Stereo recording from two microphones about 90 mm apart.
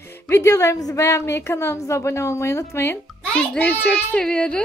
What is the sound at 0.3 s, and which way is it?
A woman's voice, 30° left (ahead or behind).